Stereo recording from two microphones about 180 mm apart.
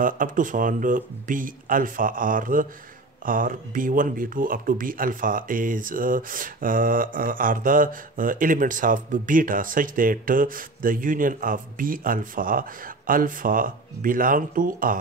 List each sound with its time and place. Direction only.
0.0 s speech: 45° right (ahead or behind)